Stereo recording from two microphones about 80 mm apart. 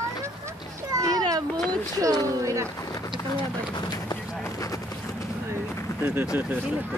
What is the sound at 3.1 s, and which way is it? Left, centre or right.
Speech, left.